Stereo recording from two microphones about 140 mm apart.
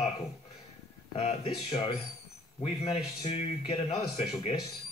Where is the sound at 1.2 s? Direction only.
45° left (ahead or behind).